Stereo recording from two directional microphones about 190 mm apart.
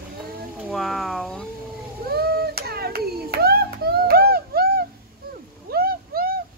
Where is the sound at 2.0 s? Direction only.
55° right (ahead or behind).